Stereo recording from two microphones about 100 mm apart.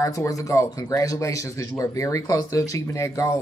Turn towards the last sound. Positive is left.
turn(degrees=30)  # may be behind; listen again after turning